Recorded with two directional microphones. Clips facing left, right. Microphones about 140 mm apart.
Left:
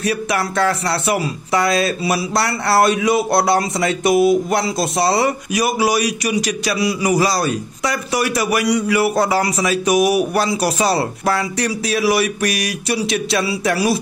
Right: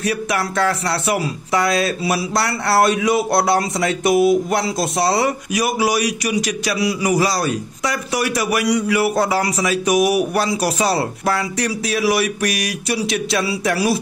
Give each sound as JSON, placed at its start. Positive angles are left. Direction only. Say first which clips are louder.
{"t": 0.0, "sound": "speech", "louder": "left 1 dB", "side_deg": 30}